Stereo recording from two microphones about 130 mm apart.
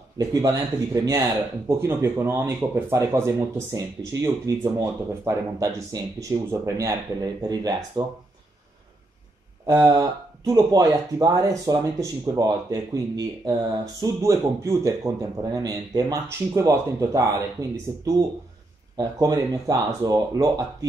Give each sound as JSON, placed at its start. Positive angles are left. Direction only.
{"t": 0.2, "sound": "speech", "side_deg": -25}
{"t": 9.7, "sound": "speech", "side_deg": -30}